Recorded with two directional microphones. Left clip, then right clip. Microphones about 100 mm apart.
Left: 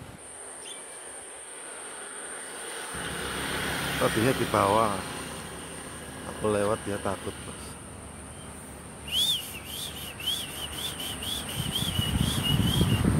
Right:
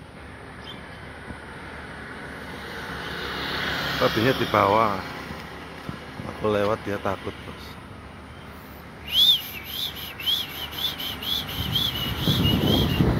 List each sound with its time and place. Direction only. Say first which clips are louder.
2.5 s vehicle: right 2 dB; 15° right (ahead or behind)
3.0 s insect: right 2 dB; 35° right (ahead or behind); by 4.3 s 90° right
4.5 s speech: right 5 dB; 10° right (ahead or behind)
4.8 s speech: right 4 dB; 30° right (ahead or behind)
6.4 s speech: right 3 dB; 10° right (ahead or behind)
9.1 s whistle: right 8 dB; 10° right (ahead or behind)